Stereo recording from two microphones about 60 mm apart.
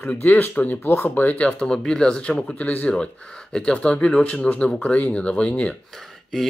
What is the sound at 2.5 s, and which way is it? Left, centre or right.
Speech, left.